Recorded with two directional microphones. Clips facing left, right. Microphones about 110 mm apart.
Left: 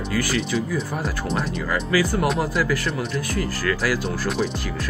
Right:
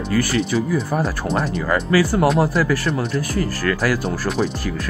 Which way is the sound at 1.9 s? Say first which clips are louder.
Right 4 dB; 40° right (ahead or behind).